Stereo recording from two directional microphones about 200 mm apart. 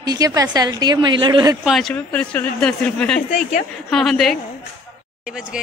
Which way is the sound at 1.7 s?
Centre (ahead or behind).